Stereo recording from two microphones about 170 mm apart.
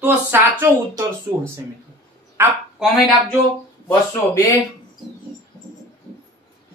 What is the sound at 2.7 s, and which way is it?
Speech, centre (ahead or behind).